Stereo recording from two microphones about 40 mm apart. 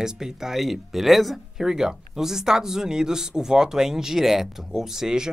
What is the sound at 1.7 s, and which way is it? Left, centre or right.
Speech, centre.